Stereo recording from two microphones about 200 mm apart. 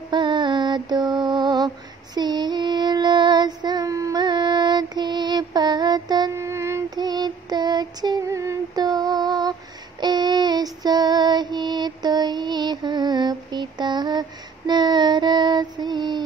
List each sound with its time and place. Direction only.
0.1 s mantra: 25° right (ahead or behind)
1.2 s lullaby: 20° right (ahead or behind)
2.1 s child singing: 20° right (ahead or behind)
13.7 s a sound: 20° right (ahead or behind)
14.7 s female singing: 20° right (ahead or behind)